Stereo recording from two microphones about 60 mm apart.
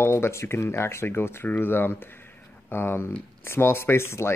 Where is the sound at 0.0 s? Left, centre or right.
Left.